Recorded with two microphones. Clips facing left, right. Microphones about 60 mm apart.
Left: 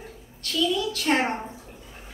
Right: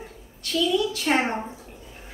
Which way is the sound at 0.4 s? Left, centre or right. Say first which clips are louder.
Right 2 dB; centre.